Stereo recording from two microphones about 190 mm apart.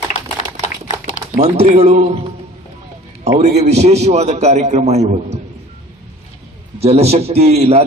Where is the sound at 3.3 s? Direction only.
35° right (ahead or behind).